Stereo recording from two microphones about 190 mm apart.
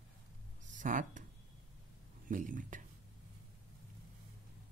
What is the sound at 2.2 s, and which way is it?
Speech, 45° right (ahead or behind).